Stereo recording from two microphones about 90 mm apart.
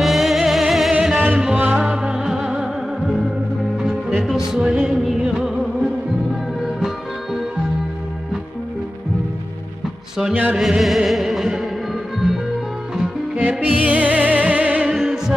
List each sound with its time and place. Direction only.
0.0 s music: centre (ahead or behind)
1.2 s music: 10° right (ahead or behind)
10.3 s music: 15° right (ahead or behind)
10.6 s music: centre (ahead or behind)
12.9 s music: 15° right (ahead or behind)